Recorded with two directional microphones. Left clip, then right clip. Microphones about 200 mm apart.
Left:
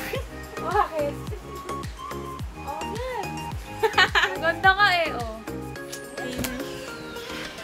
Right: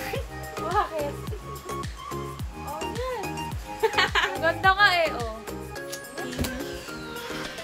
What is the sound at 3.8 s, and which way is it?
Music, 15° left (ahead or behind).